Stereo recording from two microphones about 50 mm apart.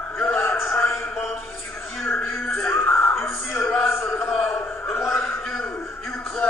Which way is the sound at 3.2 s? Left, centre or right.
Left.